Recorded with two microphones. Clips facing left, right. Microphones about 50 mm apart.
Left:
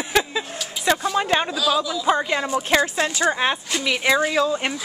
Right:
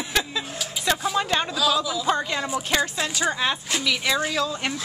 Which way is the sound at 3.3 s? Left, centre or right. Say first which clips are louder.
Left 3 dB; left.